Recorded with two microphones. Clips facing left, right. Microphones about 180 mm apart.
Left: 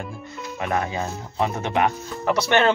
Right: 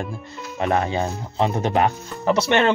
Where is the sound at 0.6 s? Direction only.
30° right (ahead or behind).